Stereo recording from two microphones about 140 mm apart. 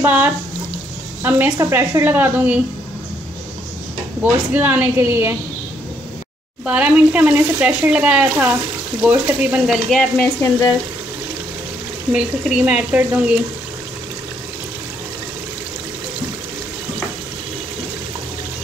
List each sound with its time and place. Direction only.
0.0 s speech: 15° right (ahead or behind)
4.2 s speech: 10° right (ahead or behind)
6.6 s speech: 10° right (ahead or behind)
9.8 s stir: 5° left (ahead or behind)
12.1 s speech: 10° right (ahead or behind)